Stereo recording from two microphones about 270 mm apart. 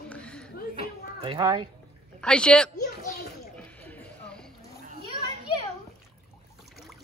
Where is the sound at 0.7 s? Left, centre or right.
Centre.